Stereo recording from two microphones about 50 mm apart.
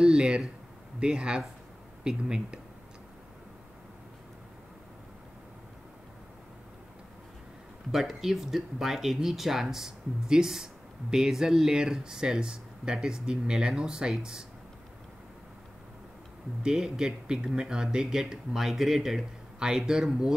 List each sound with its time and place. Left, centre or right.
0.0 s a sound: centre
0.9 s speech: centre
7.9 s speech: centre
16.6 s speech: centre